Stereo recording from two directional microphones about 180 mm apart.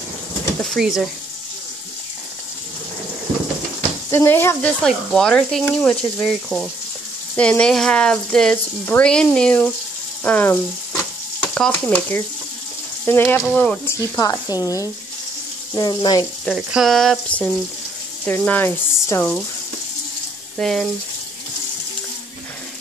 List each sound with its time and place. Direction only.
0.6 s speech: centre (ahead or behind)
4.1 s frying: 10° left (ahead or behind)
10.2 s speech: 10° left (ahead or behind)
13.4 s frying: 5° left (ahead or behind)
14.1 s speech: 20° left (ahead or behind)
16.4 s frying: 5° right (ahead or behind)
18.2 s speech: 10° left (ahead or behind)
20.5 s frying: centre (ahead or behind)